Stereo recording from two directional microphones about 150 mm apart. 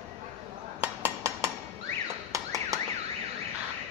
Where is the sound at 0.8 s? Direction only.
15° right (ahead or behind).